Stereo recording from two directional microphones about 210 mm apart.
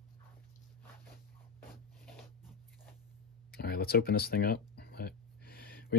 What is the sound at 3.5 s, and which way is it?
Speech, 45° left (ahead or behind).